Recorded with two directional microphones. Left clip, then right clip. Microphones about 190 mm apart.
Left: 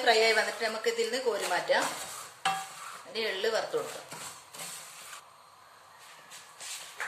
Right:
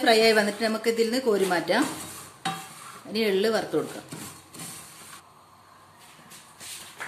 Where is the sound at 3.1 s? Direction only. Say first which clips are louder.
Right 7 dB; 30° right (ahead or behind).